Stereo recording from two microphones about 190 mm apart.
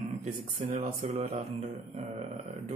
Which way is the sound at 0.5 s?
40° right (ahead or behind).